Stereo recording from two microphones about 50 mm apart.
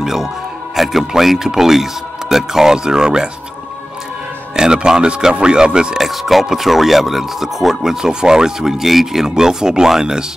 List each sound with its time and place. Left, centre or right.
0.0 s a man's voice: centre
4.6 s speech: centre
5.9 s speech: centre